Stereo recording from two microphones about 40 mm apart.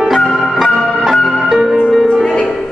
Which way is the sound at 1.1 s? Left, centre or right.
Centre.